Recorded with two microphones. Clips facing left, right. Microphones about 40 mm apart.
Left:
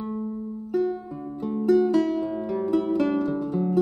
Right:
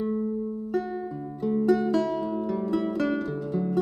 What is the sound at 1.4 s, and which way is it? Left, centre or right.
Music, centre.